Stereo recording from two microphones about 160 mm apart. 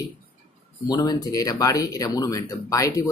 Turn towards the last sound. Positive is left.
turn(degrees=20)  # may be behind; listen again after turning